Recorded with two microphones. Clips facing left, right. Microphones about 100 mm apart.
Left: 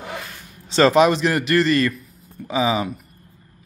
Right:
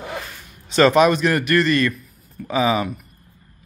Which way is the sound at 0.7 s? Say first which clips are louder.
Even; 25° left (ahead or behind).